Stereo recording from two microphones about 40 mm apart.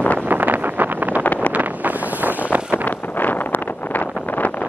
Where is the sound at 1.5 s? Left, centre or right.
Right.